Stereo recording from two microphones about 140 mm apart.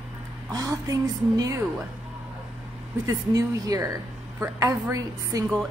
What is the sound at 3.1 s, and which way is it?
A woman's voice, 25° right (ahead or behind).